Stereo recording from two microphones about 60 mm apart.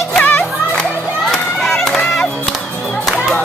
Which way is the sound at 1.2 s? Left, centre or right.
Centre.